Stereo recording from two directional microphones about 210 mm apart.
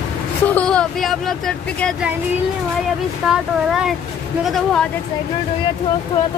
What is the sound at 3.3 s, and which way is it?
A woman's voice, centre (ahead or behind).